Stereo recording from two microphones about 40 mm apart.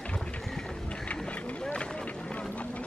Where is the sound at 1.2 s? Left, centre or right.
Left.